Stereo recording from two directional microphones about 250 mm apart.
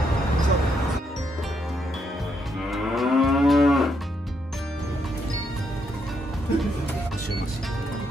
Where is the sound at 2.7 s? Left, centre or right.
Centre.